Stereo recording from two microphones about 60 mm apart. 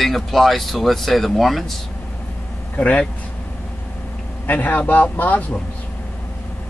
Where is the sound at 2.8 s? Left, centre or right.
Left.